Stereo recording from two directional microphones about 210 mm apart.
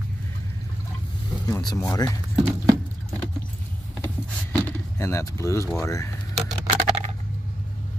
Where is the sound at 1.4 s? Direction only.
15° left (ahead or behind).